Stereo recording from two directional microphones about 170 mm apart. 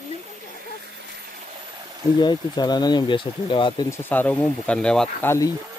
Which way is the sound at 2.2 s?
25° left (ahead or behind).